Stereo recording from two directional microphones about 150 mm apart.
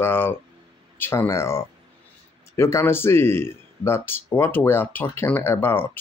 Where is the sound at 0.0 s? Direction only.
15° left (ahead or behind).